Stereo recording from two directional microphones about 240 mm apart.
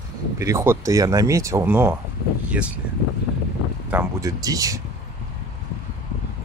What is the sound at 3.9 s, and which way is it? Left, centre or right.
Speech, centre.